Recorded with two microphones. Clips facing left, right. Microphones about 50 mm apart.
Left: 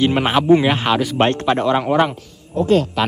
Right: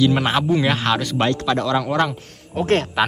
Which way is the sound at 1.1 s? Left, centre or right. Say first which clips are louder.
Left 3 dB; left.